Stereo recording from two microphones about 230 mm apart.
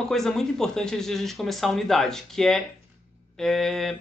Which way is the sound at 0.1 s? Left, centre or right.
Centre.